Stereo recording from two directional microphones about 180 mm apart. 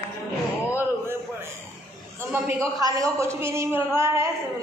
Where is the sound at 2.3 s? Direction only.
15° right (ahead or behind).